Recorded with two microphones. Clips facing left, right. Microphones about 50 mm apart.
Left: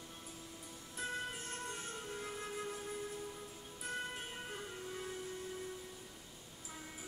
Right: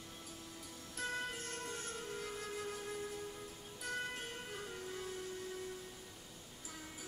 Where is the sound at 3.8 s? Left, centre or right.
Centre.